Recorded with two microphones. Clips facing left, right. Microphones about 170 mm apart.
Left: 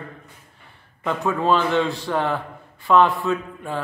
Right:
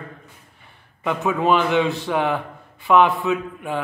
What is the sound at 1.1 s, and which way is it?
A man's voice, 15° right (ahead or behind).